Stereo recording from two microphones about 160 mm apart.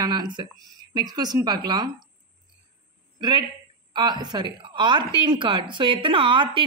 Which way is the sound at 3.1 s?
30° right (ahead or behind).